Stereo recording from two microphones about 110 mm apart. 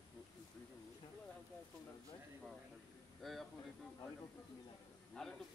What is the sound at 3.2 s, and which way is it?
Speech, centre (ahead or behind).